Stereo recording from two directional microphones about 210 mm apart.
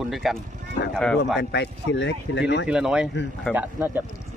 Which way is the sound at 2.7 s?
5° right (ahead or behind).